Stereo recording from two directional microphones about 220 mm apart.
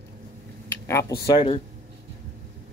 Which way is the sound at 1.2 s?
20° left (ahead or behind).